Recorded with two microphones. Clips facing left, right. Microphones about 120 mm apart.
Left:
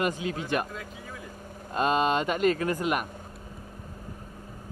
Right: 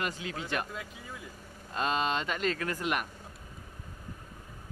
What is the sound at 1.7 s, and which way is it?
Mantra, 50° left (ahead or behind).